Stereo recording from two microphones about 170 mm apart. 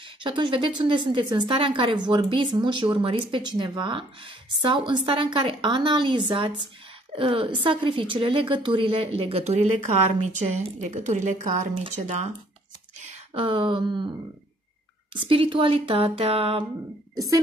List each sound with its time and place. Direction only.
0.2 s a woman's voice: 30° right (ahead or behind); by 11.7 s 45° right (ahead or behind)
13.3 s a woman's voice: 35° right (ahead or behind)
15.1 s a woman's voice: 30° right (ahead or behind)